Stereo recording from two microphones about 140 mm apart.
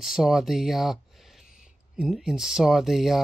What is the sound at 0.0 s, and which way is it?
Speech, centre (ahead or behind).